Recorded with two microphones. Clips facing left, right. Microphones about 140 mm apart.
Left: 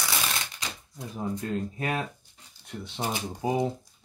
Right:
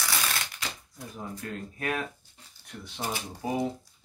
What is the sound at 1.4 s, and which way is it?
Speech, 25° left (ahead or behind).